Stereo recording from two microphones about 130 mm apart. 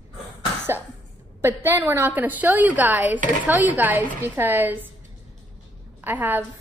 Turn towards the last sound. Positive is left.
turn(degrees=-15)  # may be behind; listen again after turning